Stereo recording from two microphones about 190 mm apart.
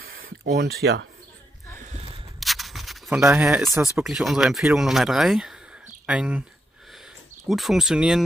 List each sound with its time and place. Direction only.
0.0 s a sound: 50° right (ahead or behind)
2.4 s rub: centre (ahead or behind)
4.0 s speech: centre (ahead or behind)
7.4 s speech: centre (ahead or behind)